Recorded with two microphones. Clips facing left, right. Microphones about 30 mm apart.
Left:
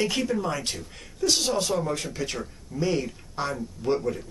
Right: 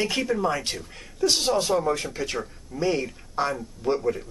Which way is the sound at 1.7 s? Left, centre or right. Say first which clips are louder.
Right 3 dB; centre.